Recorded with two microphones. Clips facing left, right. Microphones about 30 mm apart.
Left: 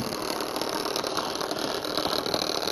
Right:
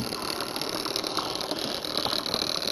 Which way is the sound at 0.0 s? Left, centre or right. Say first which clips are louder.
Left 2 dB; right.